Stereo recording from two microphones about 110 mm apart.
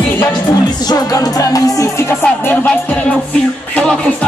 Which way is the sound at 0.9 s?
35° left (ahead or behind).